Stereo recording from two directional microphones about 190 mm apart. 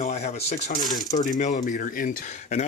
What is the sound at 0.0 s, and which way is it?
Speech, 35° left (ahead or behind).